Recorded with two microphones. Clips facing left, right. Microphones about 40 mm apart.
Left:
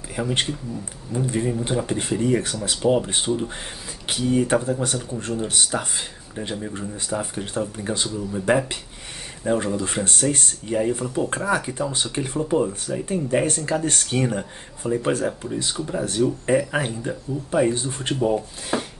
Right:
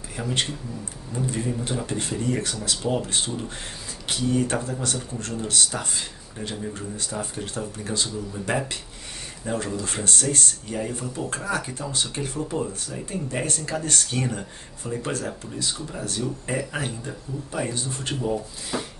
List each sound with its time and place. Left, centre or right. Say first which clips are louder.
0.1 s speech: left 3 dB; left